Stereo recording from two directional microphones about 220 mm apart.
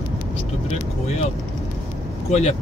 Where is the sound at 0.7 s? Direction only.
30° left (ahead or behind).